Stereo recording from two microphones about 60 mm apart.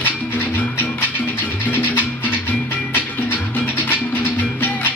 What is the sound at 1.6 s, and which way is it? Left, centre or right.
Music, left.